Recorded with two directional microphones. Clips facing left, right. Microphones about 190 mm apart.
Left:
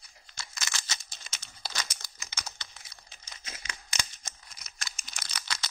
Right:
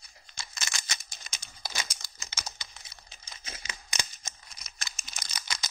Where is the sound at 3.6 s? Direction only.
20° right (ahead or behind).